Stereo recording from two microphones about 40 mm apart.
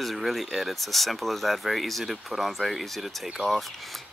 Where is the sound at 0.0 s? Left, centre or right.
Centre.